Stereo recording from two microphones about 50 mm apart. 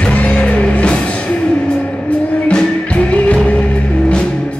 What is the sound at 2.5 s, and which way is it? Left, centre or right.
Music, left.